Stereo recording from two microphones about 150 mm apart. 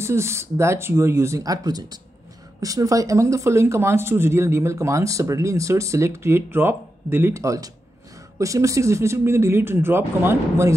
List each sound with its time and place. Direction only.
0.0 s speech: 20° right (ahead or behind)